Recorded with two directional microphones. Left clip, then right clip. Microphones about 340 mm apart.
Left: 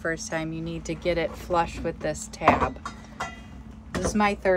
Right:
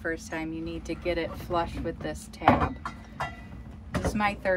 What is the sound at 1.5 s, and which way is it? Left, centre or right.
Speech, left.